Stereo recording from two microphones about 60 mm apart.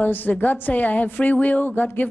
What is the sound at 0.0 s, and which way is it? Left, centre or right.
A woman's voice, left.